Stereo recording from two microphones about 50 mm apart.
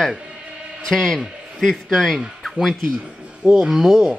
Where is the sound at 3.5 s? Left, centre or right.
Centre.